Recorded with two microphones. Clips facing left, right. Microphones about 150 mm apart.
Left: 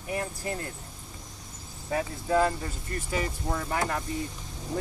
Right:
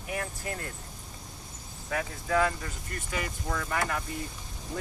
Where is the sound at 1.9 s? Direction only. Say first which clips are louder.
Left 3 dB; 25° left (ahead or behind).